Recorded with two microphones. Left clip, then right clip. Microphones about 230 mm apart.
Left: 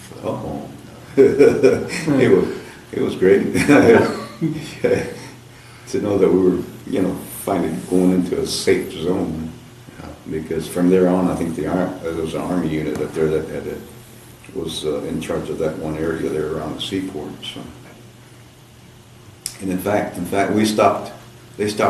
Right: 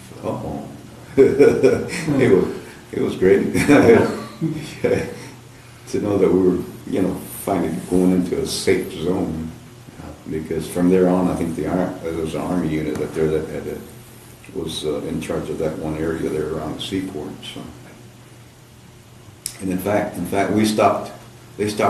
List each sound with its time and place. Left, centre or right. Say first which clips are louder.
0.2 s speech: left 1 dB; centre
10.3 s speech: left 1 dB; centre
14.7 s speech: left 1 dB; centre
19.4 s speech: left 1 dB; centre